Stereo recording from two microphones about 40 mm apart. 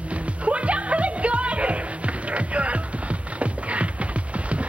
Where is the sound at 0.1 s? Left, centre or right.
Right.